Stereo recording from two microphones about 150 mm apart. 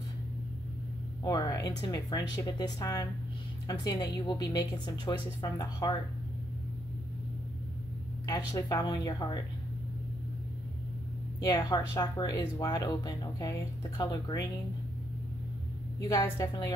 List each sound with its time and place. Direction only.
1.2 s speech: 25° left (ahead or behind)
8.3 s speech: 25° left (ahead or behind)
11.4 s speech: 25° left (ahead or behind)
16.0 s speech: 25° left (ahead or behind)